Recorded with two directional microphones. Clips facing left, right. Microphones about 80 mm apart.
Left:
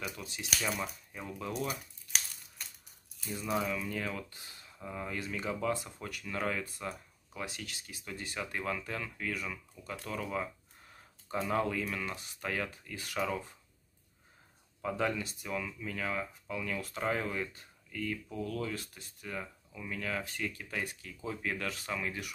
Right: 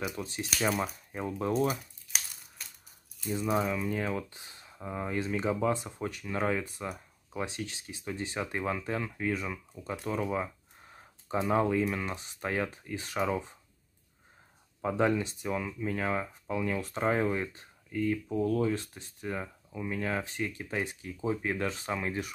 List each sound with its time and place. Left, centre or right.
0.1 s speech: right
2.6 s crushing: centre
3.3 s speech: right
14.8 s speech: right